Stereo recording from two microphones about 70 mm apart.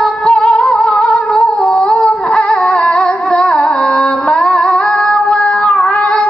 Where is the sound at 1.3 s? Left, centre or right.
Centre.